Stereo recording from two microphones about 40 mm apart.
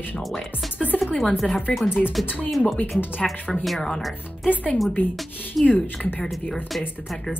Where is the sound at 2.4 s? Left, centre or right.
Centre.